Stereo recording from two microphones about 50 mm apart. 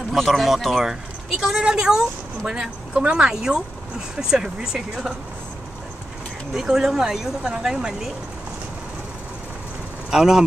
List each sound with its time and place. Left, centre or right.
0.1 s speech: centre
6.5 s speech: centre
10.1 s speech: centre